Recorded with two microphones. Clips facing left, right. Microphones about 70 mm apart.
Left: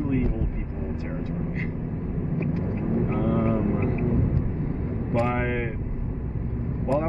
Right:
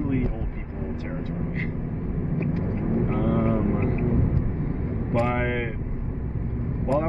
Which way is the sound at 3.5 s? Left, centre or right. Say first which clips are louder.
Even; centre.